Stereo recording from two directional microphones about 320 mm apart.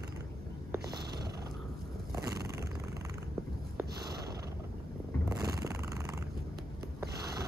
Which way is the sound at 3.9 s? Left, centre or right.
Right.